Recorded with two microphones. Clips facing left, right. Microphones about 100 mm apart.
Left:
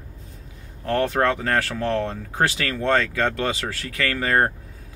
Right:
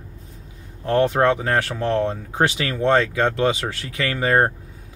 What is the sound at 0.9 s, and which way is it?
Speech, 20° right (ahead or behind).